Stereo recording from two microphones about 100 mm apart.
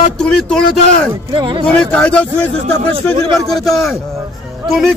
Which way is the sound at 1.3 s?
55° right (ahead or behind).